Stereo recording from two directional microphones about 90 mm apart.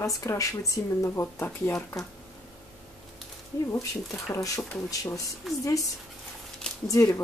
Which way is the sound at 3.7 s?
30° left (ahead or behind).